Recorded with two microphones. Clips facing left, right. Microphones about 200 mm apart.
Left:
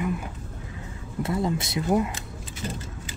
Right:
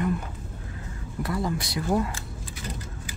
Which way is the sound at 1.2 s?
25° left (ahead or behind).